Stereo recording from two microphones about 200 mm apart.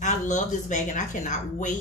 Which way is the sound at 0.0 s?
40° left (ahead or behind).